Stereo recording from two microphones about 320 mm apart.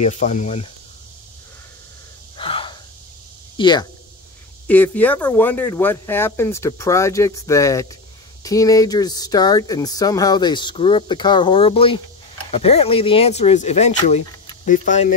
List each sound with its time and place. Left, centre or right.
0.0 s speech: left
2.3 s gasp: centre
3.5 s speech: centre